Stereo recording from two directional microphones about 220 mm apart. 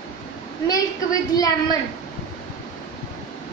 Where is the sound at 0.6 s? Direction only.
15° left (ahead or behind).